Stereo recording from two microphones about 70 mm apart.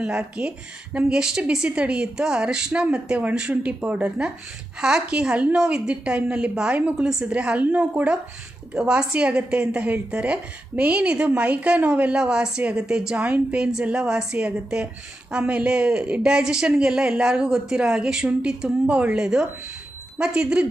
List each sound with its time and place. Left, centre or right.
0.0 s a woman's voice: centre